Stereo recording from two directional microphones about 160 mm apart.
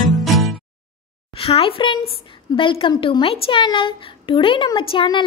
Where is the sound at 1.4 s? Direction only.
35° left (ahead or behind).